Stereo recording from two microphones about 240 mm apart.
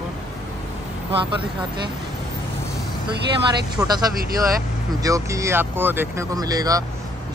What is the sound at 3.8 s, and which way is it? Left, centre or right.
Speech, centre.